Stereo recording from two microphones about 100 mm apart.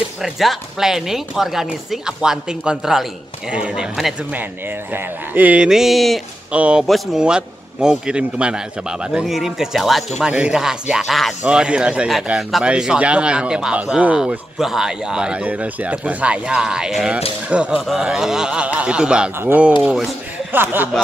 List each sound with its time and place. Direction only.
0.2 s speech: centre (ahead or behind)
4.3 s a man's voice: 20° right (ahead or behind); by 6.2 s centre (ahead or behind)
6.5 s a man's voice: 10° right (ahead or behind)
19.8 s speech: centre (ahead or behind)
20.5 s speech: 20° right (ahead or behind)